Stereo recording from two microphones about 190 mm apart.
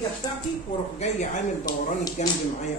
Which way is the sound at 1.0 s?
40° left (ahead or behind).